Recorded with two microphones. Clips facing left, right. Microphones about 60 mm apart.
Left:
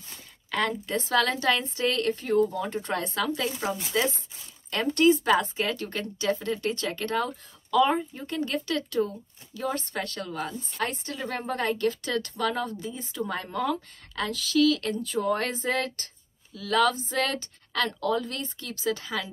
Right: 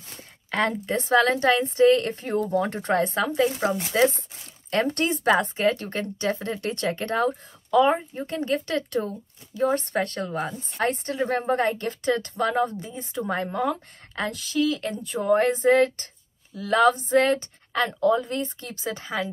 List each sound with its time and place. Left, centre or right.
0.5 s speech: right